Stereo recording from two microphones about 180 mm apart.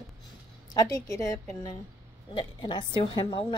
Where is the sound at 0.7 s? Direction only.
20° left (ahead or behind).